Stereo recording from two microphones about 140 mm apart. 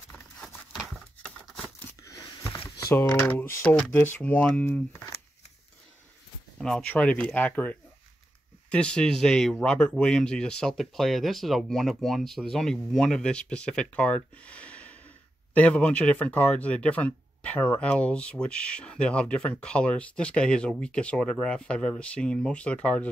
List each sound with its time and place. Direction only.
0.4 s tearing: centre (ahead or behind)
2.0 s a sound: 20° left (ahead or behind)
2.8 s speech: 20° left (ahead or behind)
6.6 s speech: 5° left (ahead or behind)